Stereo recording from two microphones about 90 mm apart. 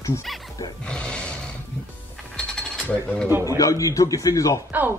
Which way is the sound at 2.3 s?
10° left (ahead or behind).